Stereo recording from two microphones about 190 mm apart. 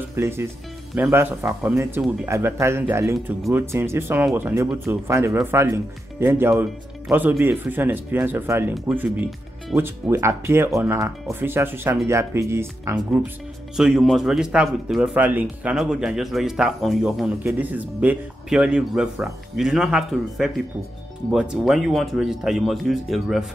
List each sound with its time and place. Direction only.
0.1 s speech: 15° right (ahead or behind)
13.7 s speech: centre (ahead or behind)